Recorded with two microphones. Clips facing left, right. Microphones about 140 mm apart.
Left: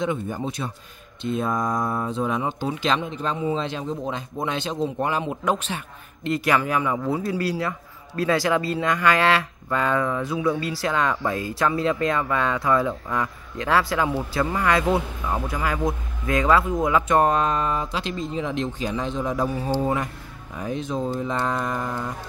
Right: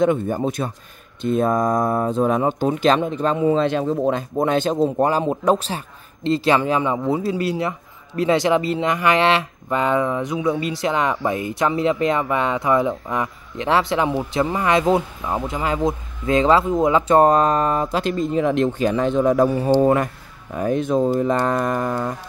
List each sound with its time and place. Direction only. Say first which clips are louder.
0.0 s speech: right 7 dB; 50° right (ahead or behind)
3.3 s speech: right 9 dB; 60° right (ahead or behind)